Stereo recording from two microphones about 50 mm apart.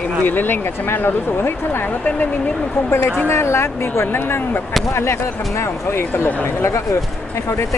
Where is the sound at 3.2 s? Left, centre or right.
Left.